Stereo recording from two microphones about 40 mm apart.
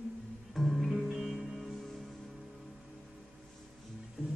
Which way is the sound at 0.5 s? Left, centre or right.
Centre.